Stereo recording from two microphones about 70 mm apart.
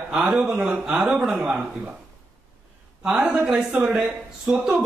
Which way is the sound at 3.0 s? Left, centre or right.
Centre.